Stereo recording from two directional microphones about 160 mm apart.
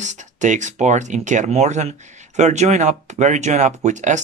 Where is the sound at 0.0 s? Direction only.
50° right (ahead or behind).